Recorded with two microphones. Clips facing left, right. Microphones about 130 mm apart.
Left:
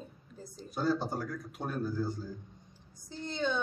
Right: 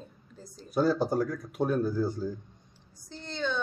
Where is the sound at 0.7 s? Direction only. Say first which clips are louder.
Right 6 dB; 90° right.